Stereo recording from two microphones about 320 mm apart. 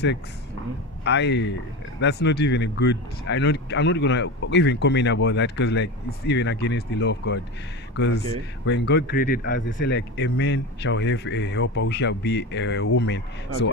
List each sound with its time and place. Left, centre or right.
1.0 s speech: left